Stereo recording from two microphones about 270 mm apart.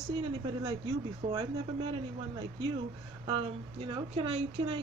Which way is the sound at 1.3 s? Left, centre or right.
Centre.